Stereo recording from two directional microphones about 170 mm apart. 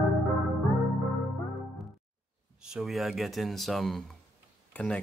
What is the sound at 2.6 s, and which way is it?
Speech, 5° right (ahead or behind).